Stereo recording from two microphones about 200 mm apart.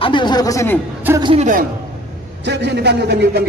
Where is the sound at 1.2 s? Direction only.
25° right (ahead or behind).